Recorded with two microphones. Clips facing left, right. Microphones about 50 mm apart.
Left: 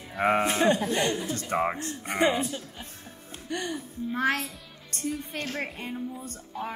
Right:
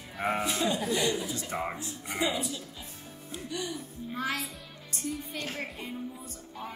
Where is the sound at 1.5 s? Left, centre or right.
Left.